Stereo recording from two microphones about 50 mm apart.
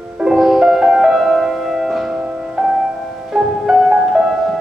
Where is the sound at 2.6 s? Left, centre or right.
Centre.